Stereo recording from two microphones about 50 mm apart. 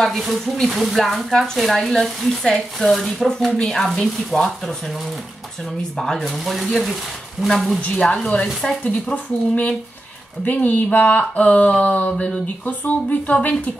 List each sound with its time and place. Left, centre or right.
0.2 s speech: centre
6.2 s speech: centre
7.8 s speech: left
9.1 s speech: left